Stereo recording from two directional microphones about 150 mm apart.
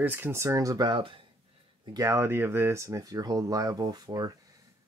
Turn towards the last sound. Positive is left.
turn(degrees=-25)  # may be behind; listen again after turning